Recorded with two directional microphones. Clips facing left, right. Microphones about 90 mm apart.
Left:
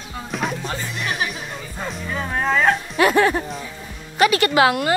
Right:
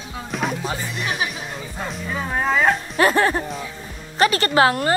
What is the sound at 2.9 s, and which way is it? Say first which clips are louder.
Speech: left 2 dB; 35° right (ahead or behind).